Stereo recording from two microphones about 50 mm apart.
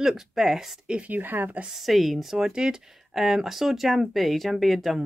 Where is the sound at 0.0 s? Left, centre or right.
Centre.